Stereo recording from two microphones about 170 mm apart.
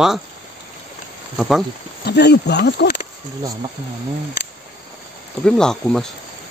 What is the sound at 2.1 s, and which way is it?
Speech, 80° left.